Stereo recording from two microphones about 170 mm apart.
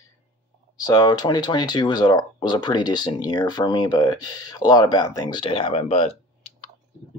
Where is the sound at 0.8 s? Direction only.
20° left (ahead or behind).